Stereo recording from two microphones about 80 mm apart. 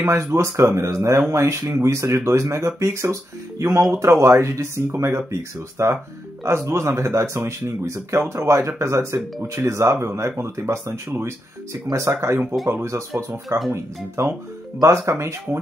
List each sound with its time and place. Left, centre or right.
0.0 s speech: right